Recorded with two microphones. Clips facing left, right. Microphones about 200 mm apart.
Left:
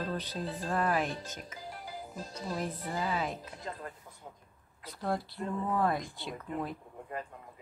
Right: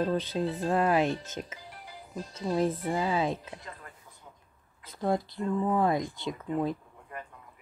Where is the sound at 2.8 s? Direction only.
25° right (ahead or behind).